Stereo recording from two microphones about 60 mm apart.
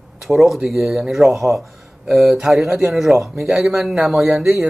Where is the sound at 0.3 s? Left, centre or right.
Centre.